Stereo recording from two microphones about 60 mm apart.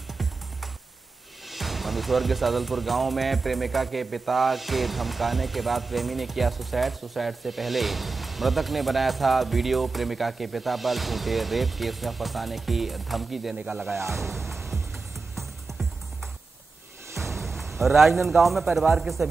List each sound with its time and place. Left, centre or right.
1.5 s speech: centre
14.3 s music: centre
17.3 s music: centre
17.7 s speech: centre